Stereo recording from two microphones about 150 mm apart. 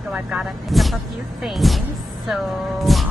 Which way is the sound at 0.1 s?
5° right (ahead or behind).